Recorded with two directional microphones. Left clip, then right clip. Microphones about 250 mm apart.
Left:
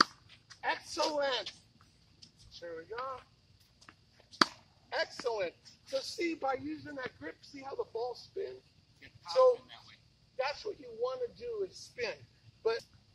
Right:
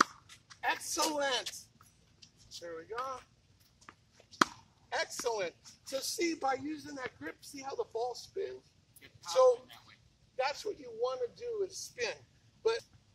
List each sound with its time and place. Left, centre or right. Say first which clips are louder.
0.6 s a woman's voice: right 1 dB; right
3.8 s a sound: right 2 dB; centre
4.8 s speech: even; right